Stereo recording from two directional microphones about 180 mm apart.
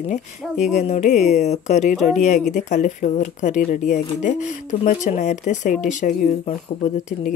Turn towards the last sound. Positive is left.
turn(degrees=40)  # may be behind; listen again after turning